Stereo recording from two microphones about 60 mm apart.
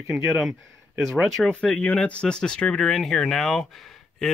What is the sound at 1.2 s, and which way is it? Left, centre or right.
Speech, centre.